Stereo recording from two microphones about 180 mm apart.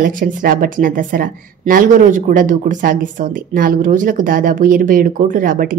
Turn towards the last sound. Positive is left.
turn(degrees=-50)  # may be behind; listen again after turning